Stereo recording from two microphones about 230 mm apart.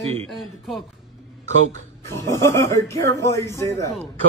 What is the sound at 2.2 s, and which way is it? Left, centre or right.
A man's voice, centre.